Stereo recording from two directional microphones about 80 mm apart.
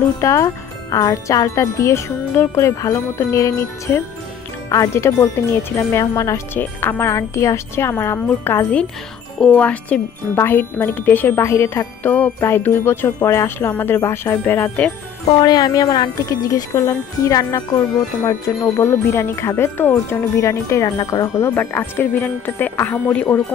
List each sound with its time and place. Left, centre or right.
0.2 s wind chime: left
5.9 s wind chime: left
6.5 s wind chime: left
9.4 s speech: centre
10.3 s jingle bell: left
12.0 s jingle bell: centre
12.4 s jingle bell: left
13.2 s wind chime: left
13.7 s jingle bell: left
14.0 s wind chime: left
15.3 s jingle bell: left
21.5 s jingle bell: left